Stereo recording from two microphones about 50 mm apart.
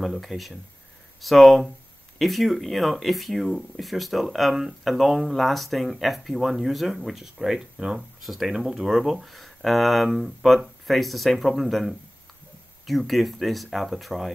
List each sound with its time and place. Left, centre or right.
0.0 s speech: centre
8.2 s speech: centre
8.5 s speech: centre